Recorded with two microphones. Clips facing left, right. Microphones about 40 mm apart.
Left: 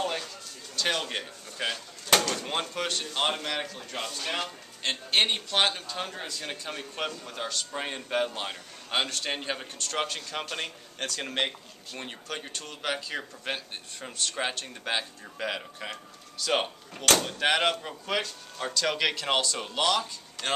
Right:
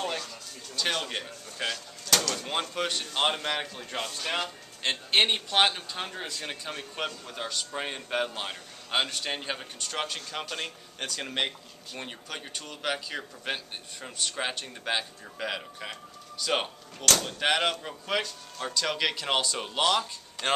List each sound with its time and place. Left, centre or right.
0.7 s speech: centre
1.7 s speech: centre
2.7 s speech: centre